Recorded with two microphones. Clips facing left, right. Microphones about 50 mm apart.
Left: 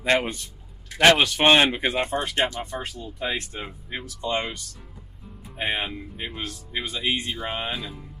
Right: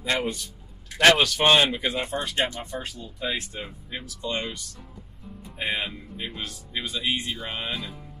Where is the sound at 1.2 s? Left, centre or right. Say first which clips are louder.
Left 2 dB; left.